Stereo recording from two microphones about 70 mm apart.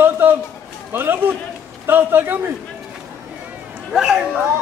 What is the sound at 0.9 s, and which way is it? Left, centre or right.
A man's voice, right.